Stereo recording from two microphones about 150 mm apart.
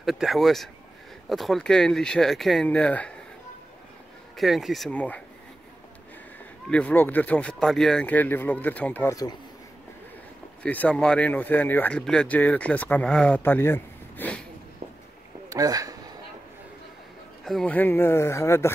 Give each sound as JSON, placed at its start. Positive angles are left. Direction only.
{"t": 0.0, "sound": "speech", "side_deg": 0}
{"t": 4.4, "sound": "speech", "side_deg": 0}
{"t": 6.7, "sound": "speech", "side_deg": 10}
{"t": 10.6, "sound": "speech", "side_deg": 10}
{"t": 15.5, "sound": "speech", "side_deg": -25}
{"t": 17.5, "sound": "speech", "side_deg": 5}